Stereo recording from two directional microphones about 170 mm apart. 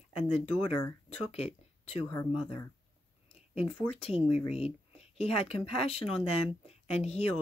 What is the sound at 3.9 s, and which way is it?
Speech, 35° left (ahead or behind).